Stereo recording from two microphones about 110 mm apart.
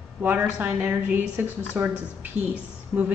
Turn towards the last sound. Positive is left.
turn(degrees=-15)  # may be behind; listen again after turning